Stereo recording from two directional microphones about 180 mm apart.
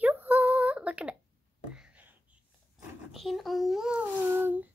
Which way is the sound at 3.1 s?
Centre (ahead or behind).